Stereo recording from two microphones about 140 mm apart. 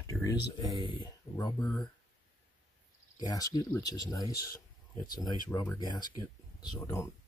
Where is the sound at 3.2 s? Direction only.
25° left (ahead or behind).